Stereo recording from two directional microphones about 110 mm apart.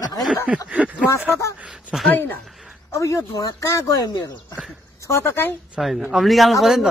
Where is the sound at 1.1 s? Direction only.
25° left (ahead or behind).